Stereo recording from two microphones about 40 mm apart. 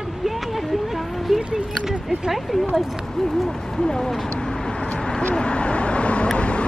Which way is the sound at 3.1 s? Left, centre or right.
Centre.